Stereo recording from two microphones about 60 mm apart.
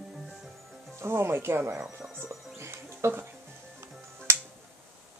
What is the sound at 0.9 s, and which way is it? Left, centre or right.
Speech, right.